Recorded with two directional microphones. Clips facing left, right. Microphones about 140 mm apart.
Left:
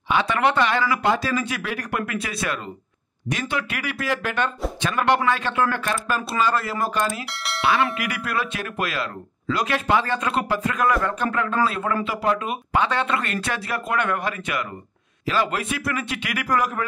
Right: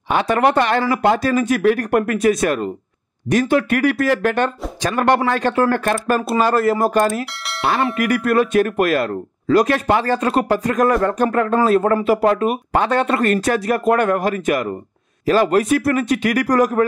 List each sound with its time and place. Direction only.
0.1 s speech: 45° right (ahead or behind)